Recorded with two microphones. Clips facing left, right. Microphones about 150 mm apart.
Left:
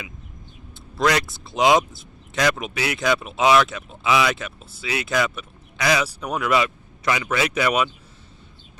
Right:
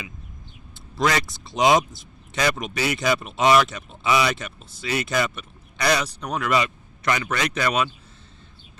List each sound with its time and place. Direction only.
0.9 s speech: centre (ahead or behind)